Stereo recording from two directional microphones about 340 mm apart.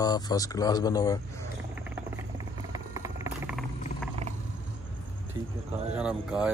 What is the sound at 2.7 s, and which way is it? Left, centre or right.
Vehicle, centre.